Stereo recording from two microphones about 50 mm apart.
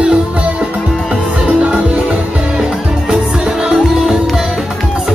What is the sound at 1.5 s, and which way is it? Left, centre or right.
Music, right.